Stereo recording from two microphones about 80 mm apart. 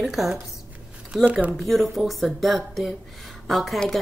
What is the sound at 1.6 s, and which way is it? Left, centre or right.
A woman's voice, centre.